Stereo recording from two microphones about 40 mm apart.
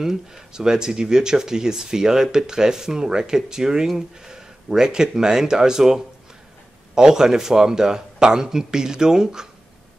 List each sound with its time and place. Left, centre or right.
0.0 s speech: centre